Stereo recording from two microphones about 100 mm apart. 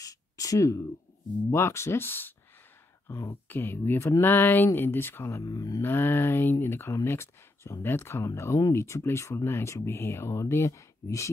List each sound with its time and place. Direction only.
0.0 s a sound: 35° left (ahead or behind)
1.5 s speech: 25° left (ahead or behind)
5.8 s speech: 20° left (ahead or behind)